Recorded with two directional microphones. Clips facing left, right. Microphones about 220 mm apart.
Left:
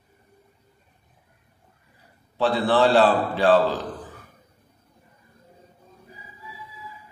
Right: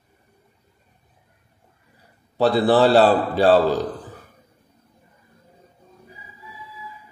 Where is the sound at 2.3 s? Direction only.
40° right (ahead or behind).